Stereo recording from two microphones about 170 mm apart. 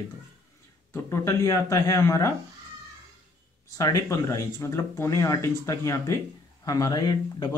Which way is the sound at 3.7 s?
20° left (ahead or behind).